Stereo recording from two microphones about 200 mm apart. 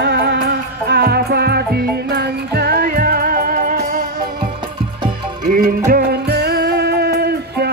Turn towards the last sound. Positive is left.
turn(degrees=-55)  # may be behind; listen again after turning